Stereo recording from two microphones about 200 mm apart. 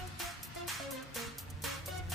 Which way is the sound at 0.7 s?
Centre (ahead or behind).